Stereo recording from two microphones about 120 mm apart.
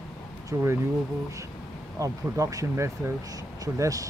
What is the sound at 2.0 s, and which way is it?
Speech, 25° right (ahead or behind).